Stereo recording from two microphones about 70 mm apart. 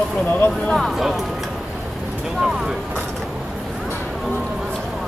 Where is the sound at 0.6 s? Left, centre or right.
Centre.